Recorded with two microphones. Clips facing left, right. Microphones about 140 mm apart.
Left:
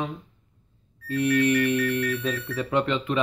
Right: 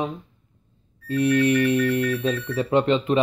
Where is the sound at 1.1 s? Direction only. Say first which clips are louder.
Right 3 dB; 20° right (ahead or behind).